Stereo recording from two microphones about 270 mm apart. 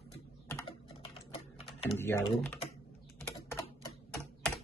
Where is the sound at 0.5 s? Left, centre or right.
Centre.